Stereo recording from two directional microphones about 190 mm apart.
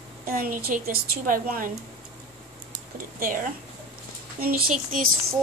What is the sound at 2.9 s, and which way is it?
Speech, 50° right (ahead or behind).